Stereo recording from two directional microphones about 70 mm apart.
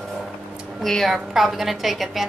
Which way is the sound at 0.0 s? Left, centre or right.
Centre.